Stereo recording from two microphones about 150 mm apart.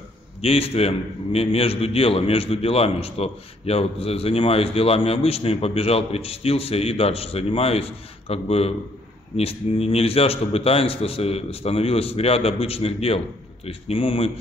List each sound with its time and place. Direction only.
0.4 s a man's voice: 40° left (ahead or behind)